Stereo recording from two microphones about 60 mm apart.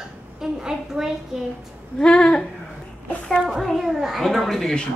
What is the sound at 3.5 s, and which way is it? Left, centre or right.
A child's voice, centre.